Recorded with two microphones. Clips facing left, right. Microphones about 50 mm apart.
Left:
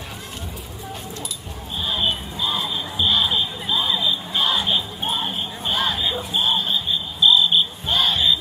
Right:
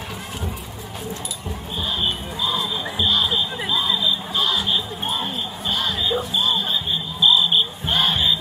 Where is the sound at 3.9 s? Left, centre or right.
Left.